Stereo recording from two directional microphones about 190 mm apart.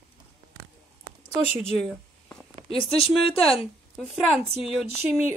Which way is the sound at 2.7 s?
30° left (ahead or behind).